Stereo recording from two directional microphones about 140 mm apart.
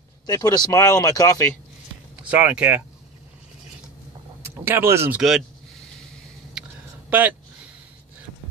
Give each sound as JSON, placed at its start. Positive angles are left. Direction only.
{"t": 0.3, "sound": "speech", "side_deg": 25}
{"t": 2.2, "sound": "speech", "side_deg": -10}
{"t": 4.4, "sound": "speech", "side_deg": -15}
{"t": 6.6, "sound": "a sound", "side_deg": -5}
{"t": 7.1, "sound": "speech", "side_deg": -10}